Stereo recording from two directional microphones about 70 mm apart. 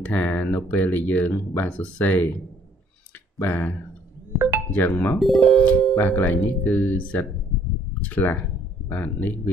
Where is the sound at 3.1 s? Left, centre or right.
Left.